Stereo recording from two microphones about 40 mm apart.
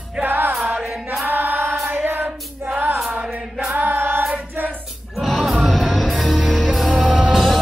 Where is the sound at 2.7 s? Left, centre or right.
Right.